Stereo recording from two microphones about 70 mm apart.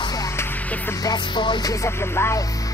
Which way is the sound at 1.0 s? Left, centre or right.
Left.